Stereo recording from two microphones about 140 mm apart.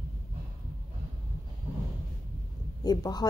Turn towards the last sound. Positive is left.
turn(degrees=30)  # may be behind; listen again after turning